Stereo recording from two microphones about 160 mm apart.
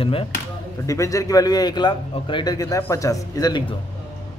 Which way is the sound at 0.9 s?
20° left (ahead or behind).